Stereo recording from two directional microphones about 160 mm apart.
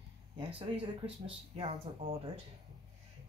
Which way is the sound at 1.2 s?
35° right (ahead or behind).